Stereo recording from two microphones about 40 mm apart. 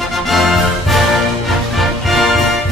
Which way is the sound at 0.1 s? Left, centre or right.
Centre.